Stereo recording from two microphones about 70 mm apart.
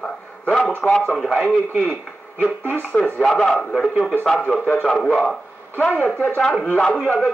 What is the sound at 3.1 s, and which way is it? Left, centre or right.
Speech, centre.